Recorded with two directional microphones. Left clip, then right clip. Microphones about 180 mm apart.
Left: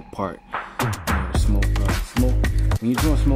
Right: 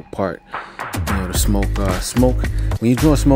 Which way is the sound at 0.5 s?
Centre (ahead or behind).